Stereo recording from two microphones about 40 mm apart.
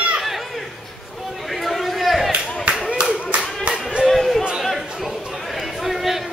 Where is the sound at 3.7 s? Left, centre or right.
Right.